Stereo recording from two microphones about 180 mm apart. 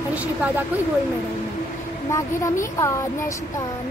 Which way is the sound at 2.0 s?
15° left (ahead or behind).